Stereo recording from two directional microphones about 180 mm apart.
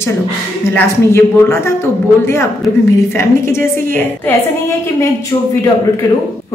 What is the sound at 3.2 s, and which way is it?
Speech, 15° left (ahead or behind).